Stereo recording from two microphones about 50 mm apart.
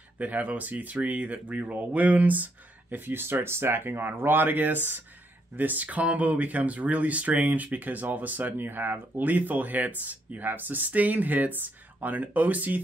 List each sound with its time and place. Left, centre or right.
0.2 s speech: right